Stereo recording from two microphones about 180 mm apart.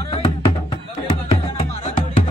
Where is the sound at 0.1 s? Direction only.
35° left (ahead or behind).